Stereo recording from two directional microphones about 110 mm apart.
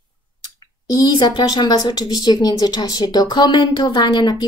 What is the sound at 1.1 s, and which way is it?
A woman's voice, 40° left (ahead or behind).